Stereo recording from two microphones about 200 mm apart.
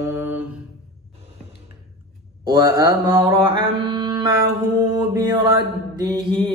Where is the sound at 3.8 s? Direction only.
25° right (ahead or behind).